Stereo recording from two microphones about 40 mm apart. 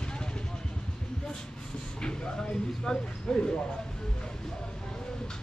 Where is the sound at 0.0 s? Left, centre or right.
Left.